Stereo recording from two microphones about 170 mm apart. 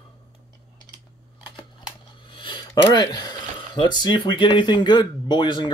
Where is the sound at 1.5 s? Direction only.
30° left (ahead or behind).